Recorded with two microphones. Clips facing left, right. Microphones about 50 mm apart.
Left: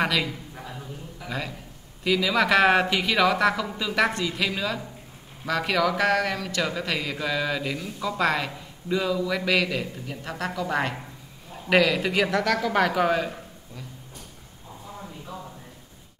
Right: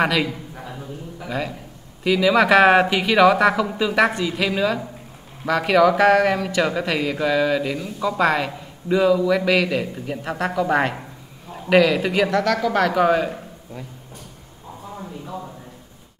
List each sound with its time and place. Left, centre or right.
0.0 s a sound: centre
2.0 s speech: centre
9.9 s speech: centre
11.7 s speech: centre
13.0 s speech: centre